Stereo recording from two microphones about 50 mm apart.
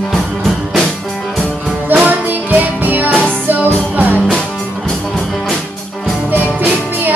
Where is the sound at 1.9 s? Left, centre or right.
Right.